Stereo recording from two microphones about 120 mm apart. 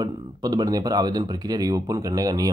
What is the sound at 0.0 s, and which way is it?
Speech, 35° right (ahead or behind).